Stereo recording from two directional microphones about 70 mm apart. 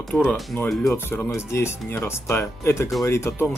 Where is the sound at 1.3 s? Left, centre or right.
Left.